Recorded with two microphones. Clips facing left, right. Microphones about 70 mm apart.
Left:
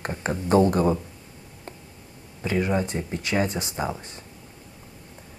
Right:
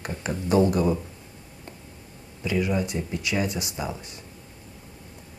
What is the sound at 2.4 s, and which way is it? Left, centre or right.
Speech, left.